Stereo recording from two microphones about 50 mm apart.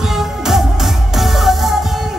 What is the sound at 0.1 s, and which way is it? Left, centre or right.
Music, centre.